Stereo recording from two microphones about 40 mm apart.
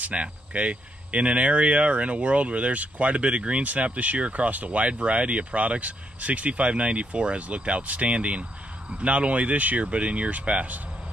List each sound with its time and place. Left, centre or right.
0.0 s speech: right